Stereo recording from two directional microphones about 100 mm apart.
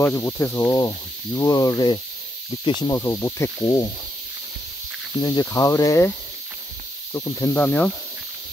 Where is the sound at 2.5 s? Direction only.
50° left (ahead or behind).